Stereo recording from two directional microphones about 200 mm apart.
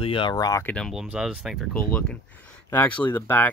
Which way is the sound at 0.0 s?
25° left (ahead or behind).